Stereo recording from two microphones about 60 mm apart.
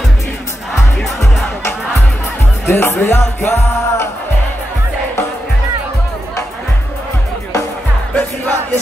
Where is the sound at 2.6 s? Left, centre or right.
Left.